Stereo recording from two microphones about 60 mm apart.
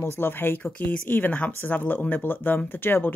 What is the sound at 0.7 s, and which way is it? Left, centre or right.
Speech, left.